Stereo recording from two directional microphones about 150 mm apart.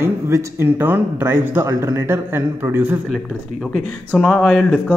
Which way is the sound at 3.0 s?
Centre (ahead or behind).